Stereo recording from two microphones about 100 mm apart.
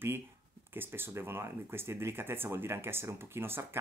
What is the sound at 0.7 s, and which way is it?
Speech, 20° right (ahead or behind).